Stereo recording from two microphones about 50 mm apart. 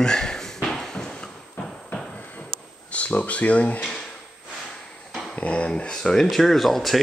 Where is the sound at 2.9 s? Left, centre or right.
Left.